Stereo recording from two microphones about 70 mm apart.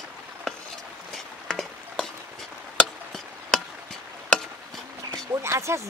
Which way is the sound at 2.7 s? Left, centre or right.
Centre.